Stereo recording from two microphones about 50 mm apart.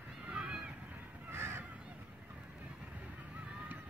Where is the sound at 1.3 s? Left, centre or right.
Right.